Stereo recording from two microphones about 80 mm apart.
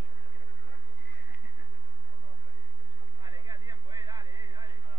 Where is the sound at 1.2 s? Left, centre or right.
Right.